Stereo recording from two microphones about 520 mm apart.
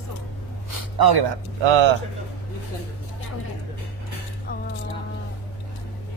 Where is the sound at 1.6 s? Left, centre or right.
Right.